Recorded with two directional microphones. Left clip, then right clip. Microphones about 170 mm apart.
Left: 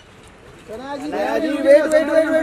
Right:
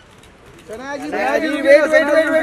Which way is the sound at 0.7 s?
10° right (ahead or behind).